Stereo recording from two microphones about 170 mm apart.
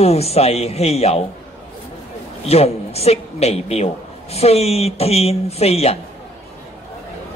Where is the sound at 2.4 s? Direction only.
35° left (ahead or behind).